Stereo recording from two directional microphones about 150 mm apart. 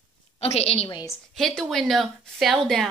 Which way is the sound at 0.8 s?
20° left (ahead or behind).